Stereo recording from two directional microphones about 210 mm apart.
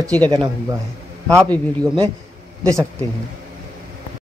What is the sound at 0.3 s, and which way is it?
Speech, 20° right (ahead or behind).